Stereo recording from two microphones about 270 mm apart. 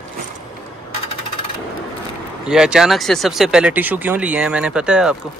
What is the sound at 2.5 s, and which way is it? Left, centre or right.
Speech, centre.